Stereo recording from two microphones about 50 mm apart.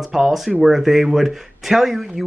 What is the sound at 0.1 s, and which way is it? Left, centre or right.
Speech, centre.